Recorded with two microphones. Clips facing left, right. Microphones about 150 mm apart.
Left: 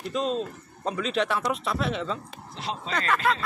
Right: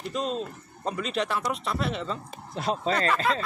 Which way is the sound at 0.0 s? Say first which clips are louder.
Left 2 dB; centre (ahead or behind).